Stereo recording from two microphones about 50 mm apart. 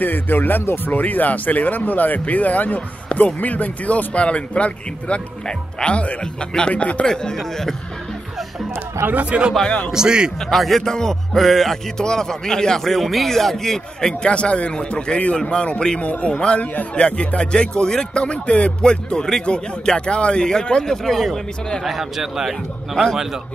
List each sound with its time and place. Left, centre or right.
0.0 s a man's voice: left
7.1 s a man's voice: centre
9.0 s speech: right
9.9 s a man's voice: centre
10.4 s a man's voice: centre
14.2 s a man's voice: left
21.8 s a man's voice: centre